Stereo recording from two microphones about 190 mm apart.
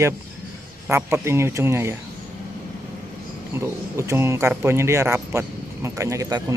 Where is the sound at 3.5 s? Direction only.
15° right (ahead or behind).